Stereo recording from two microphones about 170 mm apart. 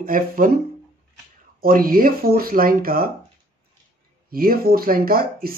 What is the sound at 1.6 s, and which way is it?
Speech, 55° right (ahead or behind).